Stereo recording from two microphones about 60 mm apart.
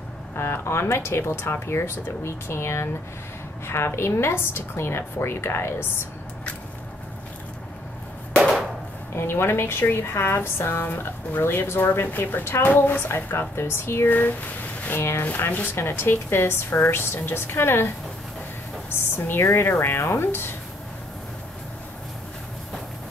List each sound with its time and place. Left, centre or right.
0.4 s speech: left
8.4 s a sound: centre
9.1 s speech: left
15.7 s speech: left
18.9 s a woman's voice: left